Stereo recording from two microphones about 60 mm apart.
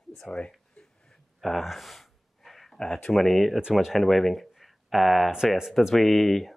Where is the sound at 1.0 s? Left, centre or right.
Centre.